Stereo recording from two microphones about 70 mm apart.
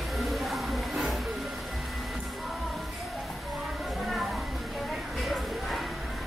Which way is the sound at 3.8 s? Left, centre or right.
Centre.